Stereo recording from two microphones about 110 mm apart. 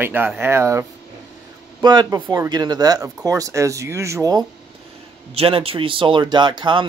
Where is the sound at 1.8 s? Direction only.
40° right (ahead or behind).